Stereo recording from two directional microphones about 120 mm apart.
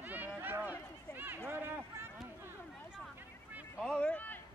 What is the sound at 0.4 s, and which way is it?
Run, 15° right (ahead or behind).